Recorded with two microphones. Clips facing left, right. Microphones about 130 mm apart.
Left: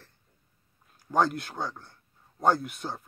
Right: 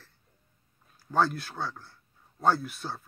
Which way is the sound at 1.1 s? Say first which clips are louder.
Left 1 dB; 15° left (ahead or behind).